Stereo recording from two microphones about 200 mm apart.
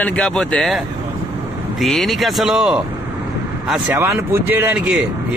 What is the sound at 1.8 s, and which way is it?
Speech, centre (ahead or behind).